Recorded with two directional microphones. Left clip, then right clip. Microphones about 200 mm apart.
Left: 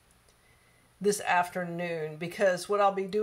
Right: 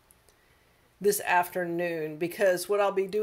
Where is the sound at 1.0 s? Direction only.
25° right (ahead or behind).